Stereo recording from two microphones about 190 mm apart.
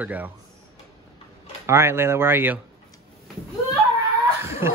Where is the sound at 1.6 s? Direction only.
15° right (ahead or behind).